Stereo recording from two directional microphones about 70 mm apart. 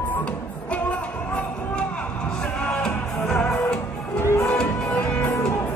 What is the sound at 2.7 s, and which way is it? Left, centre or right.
Music, centre.